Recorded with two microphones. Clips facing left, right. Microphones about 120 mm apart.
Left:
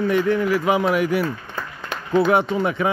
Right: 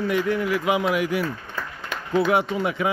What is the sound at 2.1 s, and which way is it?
Speech, 50° left (ahead or behind).